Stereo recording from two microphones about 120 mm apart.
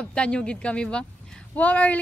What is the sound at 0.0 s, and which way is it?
A woman's voice, 10° left (ahead or behind).